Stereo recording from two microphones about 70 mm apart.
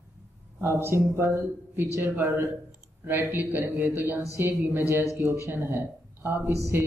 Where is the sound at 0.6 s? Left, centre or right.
Right.